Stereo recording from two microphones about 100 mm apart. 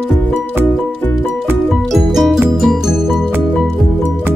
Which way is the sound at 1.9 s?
Centre (ahead or behind).